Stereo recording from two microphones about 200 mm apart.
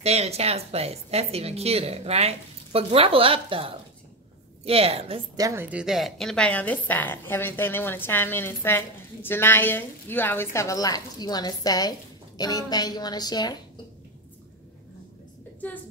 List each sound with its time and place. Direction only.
0.0 s a woman's voice: 30° right (ahead or behind); by 13.6 s 20° left (ahead or behind)